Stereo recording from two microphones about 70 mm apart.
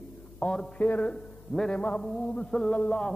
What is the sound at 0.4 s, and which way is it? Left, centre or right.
Speech, left.